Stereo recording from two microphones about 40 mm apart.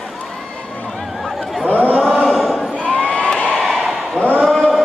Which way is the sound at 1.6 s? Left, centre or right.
Left.